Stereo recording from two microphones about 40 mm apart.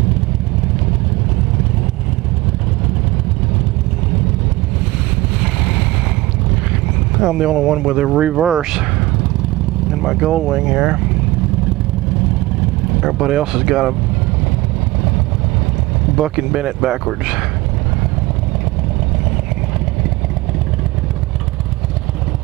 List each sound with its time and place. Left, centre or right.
5.4 s vehicle: centre
7.2 s speech: centre
10.1 s speech: centre
13.3 s speech: centre
16.2 s speech: centre